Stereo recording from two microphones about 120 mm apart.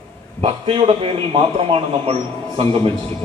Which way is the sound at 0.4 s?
55° right (ahead or behind).